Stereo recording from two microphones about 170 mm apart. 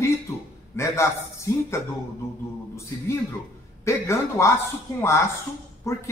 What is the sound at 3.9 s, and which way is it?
Speech, 15° left (ahead or behind).